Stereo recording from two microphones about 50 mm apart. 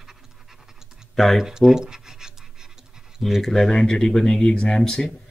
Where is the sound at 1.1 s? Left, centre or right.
Centre.